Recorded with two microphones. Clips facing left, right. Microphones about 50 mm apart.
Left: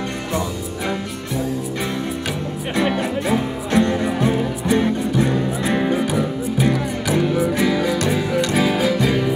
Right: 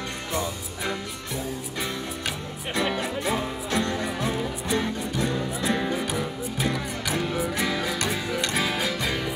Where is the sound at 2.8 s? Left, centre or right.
Centre.